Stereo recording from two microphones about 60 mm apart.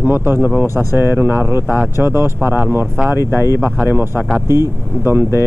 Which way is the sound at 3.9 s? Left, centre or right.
Right.